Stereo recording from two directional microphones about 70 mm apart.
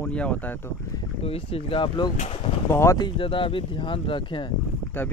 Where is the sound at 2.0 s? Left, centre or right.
Left.